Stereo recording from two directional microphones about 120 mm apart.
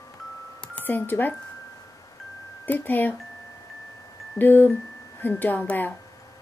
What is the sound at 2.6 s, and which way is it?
Speech, 15° left (ahead or behind).